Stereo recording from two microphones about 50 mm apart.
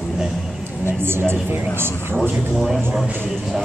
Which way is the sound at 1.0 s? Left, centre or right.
Right.